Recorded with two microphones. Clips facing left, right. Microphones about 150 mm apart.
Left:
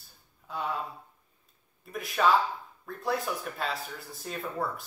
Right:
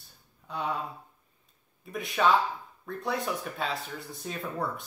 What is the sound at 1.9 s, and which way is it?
Speech, centre (ahead or behind).